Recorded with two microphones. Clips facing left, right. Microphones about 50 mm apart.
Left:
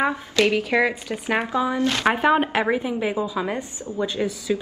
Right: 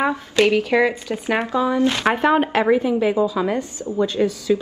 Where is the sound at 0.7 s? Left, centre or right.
Centre.